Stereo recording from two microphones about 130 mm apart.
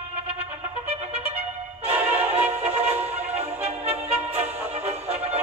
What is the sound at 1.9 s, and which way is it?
Music, 10° right (ahead or behind).